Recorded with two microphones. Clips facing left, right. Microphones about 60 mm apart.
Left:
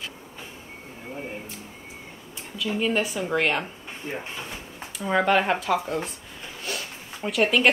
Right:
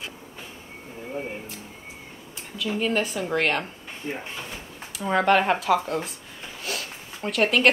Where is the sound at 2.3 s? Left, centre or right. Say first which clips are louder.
Even; centre.